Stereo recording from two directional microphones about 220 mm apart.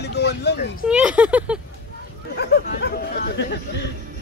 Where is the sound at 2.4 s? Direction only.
45° left (ahead or behind).